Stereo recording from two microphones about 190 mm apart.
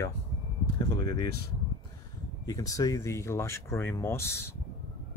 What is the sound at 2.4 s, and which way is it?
Speech, 15° left (ahead or behind).